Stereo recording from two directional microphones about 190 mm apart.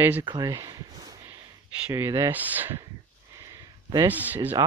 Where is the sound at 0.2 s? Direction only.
20° right (ahead or behind).